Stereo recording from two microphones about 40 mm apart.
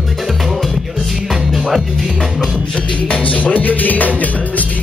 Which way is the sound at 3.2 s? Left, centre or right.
Left.